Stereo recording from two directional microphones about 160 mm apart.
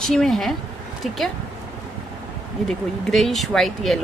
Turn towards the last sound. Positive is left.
turn(degrees=0)  # may be behind; listen again after turning